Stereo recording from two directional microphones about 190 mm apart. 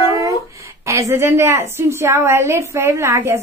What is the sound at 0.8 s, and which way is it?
A woman's voice, 15° right (ahead or behind).